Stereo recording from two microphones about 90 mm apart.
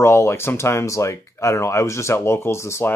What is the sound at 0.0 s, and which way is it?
Speech, 30° left (ahead or behind).